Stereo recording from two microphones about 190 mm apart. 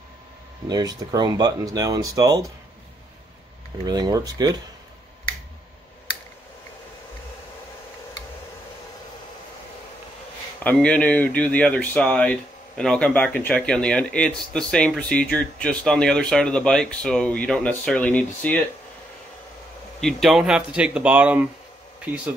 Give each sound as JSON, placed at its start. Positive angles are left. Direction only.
{"t": 0.7, "sound": "speech", "side_deg": -20}
{"t": 3.8, "sound": "speech", "side_deg": -20}
{"t": 10.6, "sound": "speech", "side_deg": 5}
{"t": 20.0, "sound": "speech", "side_deg": 0}